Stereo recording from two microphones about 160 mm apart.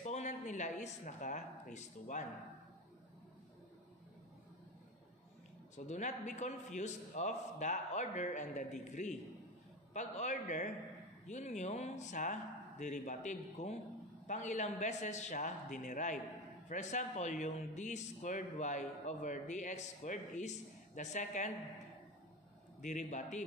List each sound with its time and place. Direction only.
0.0 s speech: 50° left (ahead or behind)
5.9 s speech: 50° left (ahead or behind)
22.8 s speech: 50° left (ahead or behind)